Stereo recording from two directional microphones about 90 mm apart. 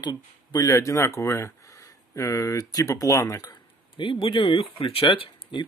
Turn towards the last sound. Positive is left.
turn(degrees=70)  # may be behind; listen again after turning